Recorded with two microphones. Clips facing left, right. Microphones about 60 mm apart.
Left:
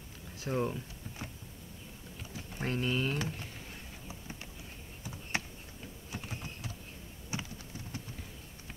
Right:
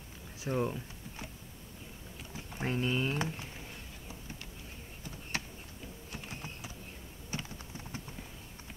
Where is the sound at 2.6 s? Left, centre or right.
Centre.